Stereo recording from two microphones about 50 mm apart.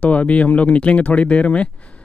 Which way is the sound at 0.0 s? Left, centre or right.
Left.